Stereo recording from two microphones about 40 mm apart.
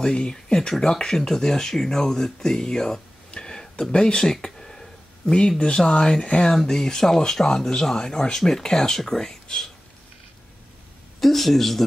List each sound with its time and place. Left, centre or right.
0.0 s speech: centre
4.2 s a sound: centre
5.6 s speech: left
8.0 s speech: centre
11.1 s speech: centre